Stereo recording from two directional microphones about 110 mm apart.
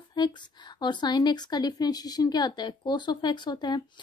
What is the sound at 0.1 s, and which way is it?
Speech, 40° left (ahead or behind).